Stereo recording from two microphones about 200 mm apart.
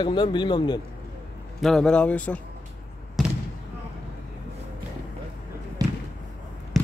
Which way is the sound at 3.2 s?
Centre (ahead or behind).